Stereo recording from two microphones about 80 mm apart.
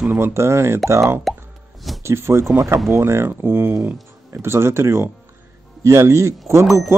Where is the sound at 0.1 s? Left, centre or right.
Right.